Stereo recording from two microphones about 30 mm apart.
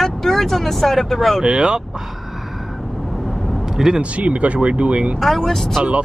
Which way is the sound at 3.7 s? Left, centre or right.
Centre.